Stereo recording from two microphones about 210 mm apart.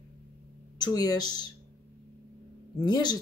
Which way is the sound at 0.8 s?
20° left (ahead or behind).